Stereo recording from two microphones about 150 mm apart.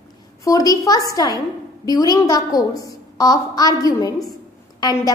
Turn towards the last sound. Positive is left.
turn(degrees=25)  # may be behind; listen again after turning